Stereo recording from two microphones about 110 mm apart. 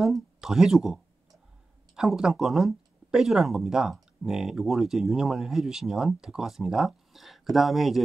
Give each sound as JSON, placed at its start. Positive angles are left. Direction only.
{"t": 0.0, "sound": "speech", "side_deg": -5}